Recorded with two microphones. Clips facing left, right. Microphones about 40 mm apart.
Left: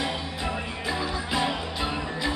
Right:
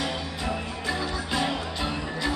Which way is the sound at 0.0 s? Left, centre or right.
Centre.